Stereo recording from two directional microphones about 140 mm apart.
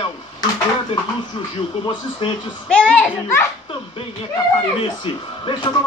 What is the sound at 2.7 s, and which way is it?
Speech, 5° left (ahead or behind).